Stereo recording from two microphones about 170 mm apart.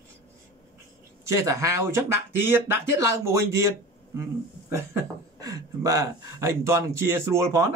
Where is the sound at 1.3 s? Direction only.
15° right (ahead or behind).